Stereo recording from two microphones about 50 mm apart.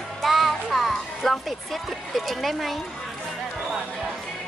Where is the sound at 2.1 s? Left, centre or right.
Centre.